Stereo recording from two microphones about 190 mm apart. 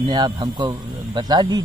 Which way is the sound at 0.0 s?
20° right (ahead or behind).